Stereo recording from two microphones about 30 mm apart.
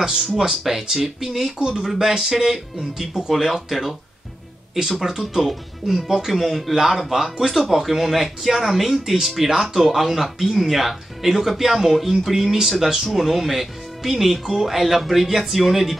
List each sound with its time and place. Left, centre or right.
0.0 s speech: right
0.5 s speech: centre